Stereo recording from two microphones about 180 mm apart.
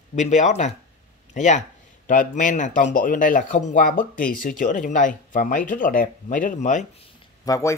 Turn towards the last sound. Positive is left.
turn(degrees=20)  # may be behind; listen again after turning